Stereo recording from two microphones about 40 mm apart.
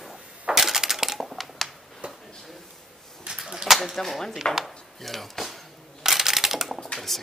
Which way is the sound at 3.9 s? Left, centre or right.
Centre.